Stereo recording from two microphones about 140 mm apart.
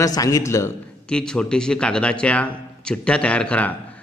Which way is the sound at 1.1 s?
5° left (ahead or behind).